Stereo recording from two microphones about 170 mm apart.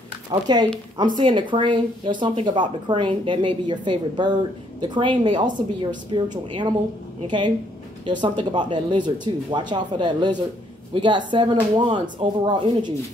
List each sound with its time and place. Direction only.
0.3 s speech: 25° right (ahead or behind)